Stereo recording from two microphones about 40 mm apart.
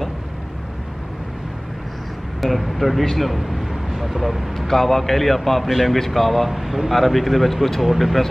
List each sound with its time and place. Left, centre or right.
2.4 s speech: centre
4.6 s speech: centre